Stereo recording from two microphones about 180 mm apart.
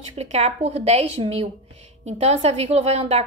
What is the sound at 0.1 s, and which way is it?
A woman's voice, 35° right (ahead or behind).